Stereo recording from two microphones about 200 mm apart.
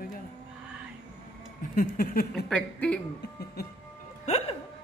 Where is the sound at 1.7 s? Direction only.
45° left (ahead or behind).